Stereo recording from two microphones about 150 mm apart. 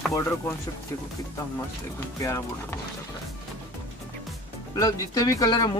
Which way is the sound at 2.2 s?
20° left (ahead or behind).